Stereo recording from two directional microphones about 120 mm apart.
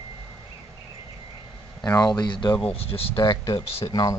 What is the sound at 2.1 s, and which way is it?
Speech, 40° left (ahead or behind).